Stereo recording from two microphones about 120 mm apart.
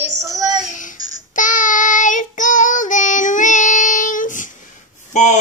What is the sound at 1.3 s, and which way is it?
Child singing, 90° left.